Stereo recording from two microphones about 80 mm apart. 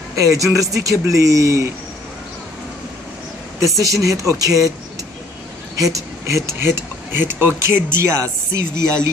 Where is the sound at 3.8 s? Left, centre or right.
Right.